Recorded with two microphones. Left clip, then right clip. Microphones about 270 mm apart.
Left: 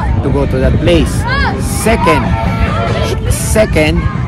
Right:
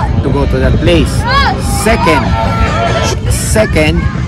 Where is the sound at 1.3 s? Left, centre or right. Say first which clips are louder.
Right 6 dB; right.